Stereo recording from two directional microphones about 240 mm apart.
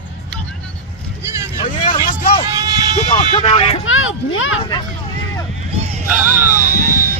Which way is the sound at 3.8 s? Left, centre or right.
Left.